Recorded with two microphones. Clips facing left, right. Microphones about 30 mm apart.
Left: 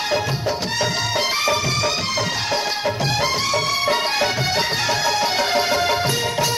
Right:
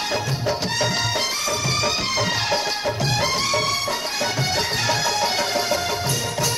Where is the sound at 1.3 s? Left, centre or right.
Left.